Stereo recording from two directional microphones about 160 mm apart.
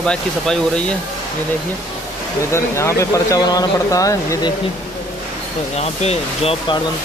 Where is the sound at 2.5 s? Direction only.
15° left (ahead or behind).